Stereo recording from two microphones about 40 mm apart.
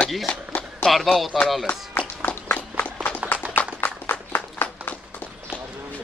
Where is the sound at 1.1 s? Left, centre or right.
Centre.